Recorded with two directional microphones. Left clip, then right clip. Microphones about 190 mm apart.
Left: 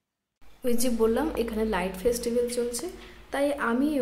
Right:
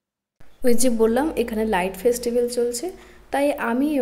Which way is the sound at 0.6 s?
20° right (ahead or behind).